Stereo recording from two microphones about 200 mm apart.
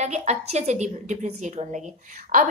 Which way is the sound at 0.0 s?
35° right (ahead or behind).